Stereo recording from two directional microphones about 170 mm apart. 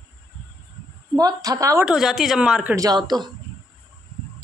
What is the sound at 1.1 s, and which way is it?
Speech, 20° right (ahead or behind).